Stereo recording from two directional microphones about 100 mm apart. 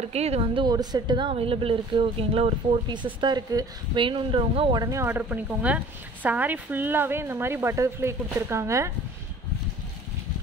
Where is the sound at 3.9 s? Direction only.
60° right (ahead or behind).